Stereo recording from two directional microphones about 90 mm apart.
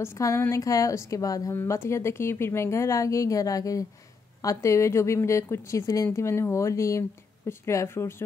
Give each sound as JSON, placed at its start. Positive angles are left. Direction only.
{"t": 0.0, "sound": "speech", "side_deg": 30}